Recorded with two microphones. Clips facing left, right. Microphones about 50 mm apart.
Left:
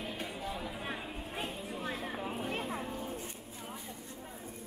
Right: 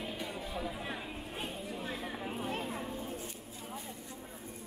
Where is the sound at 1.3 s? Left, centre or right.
Left.